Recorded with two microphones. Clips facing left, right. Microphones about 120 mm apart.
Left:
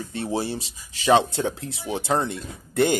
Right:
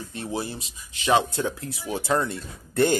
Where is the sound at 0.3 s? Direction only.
30° left (ahead or behind).